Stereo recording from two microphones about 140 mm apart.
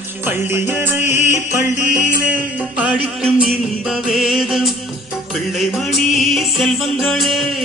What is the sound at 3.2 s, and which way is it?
Music, 5° left (ahead or behind).